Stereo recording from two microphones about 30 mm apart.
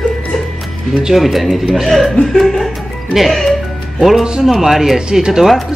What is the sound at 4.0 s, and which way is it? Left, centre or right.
Speech, centre.